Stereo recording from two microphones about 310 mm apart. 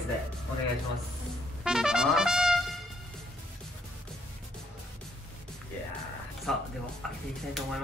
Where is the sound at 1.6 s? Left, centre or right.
Centre.